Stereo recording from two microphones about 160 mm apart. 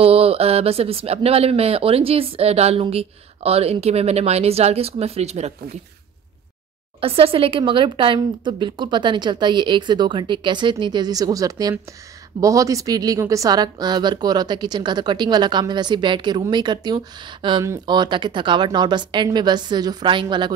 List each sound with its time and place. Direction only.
0.0 s speech: 35° right (ahead or behind)
7.0 s a woman's voice: 35° right (ahead or behind)